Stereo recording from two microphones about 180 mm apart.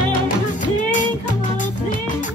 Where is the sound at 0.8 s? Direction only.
45° left (ahead or behind).